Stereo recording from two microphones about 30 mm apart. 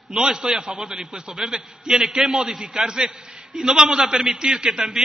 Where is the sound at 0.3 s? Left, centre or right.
Right.